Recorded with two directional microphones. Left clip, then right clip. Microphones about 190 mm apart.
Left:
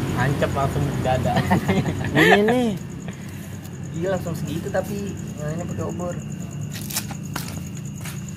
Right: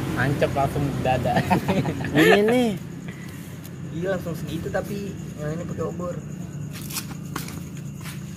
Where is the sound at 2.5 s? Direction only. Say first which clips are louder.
Even; 5° right (ahead or behind).